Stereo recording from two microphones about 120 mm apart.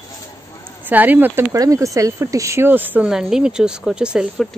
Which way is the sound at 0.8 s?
15° right (ahead or behind).